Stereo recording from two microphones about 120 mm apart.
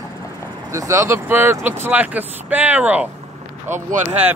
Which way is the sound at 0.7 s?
25° right (ahead or behind).